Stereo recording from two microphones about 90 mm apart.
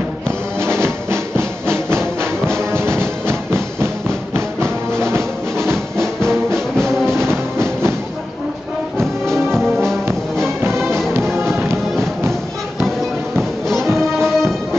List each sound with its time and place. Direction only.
0.7 s music: 30° right (ahead or behind)
5.7 s music: 5° left (ahead or behind)
9.2 s music: 5° left (ahead or behind)
13.4 s music: 5° left (ahead or behind)